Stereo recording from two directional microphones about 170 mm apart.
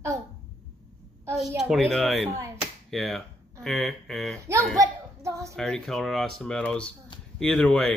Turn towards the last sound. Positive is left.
turn(degrees=5)  # may be behind; listen again after turning